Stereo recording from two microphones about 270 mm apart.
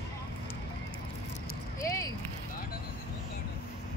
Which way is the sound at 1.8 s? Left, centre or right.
Centre.